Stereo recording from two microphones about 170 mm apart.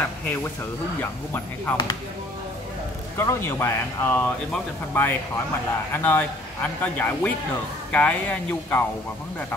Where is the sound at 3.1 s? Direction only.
15° left (ahead or behind).